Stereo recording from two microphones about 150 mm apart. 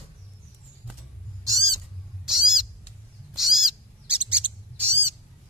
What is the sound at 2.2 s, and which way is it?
Owl, 5° right (ahead or behind).